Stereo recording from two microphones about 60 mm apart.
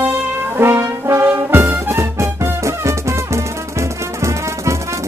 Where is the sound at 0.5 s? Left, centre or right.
Right.